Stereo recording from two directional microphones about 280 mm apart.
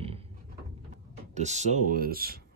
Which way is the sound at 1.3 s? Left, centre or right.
Right.